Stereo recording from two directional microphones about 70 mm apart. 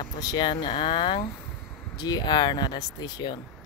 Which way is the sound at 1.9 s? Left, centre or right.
Left.